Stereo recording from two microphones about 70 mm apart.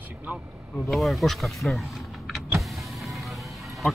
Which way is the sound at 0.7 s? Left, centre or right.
Centre.